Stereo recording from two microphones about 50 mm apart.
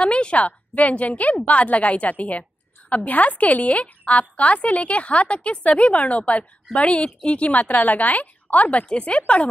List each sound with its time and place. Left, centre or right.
0.0 s a woman's voice: left